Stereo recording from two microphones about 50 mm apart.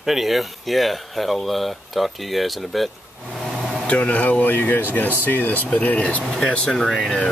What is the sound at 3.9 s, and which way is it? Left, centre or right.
Speech, left.